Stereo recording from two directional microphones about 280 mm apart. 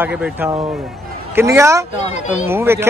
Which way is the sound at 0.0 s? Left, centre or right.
Centre.